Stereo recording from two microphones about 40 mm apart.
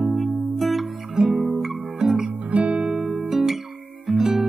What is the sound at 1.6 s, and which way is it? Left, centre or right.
Guitar, centre.